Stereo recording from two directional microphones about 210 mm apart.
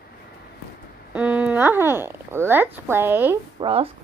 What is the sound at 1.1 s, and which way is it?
Speech, 5° right (ahead or behind).